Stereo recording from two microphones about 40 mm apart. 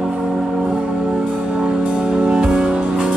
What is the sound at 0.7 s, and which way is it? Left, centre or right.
Music, right.